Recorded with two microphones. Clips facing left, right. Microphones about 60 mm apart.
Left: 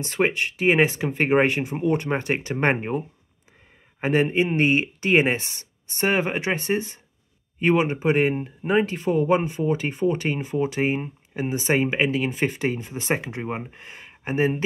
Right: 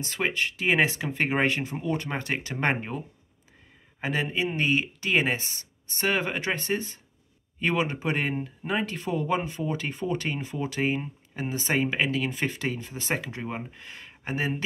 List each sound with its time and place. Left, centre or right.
0.0 s speech: left
1.1 s speech: centre
4.0 s speech: left
6.0 s speech: left